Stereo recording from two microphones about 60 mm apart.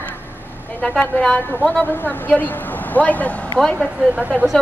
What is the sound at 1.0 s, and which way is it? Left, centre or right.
Speech, left.